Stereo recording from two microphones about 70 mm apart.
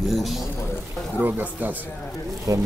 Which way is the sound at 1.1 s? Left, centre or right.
Right.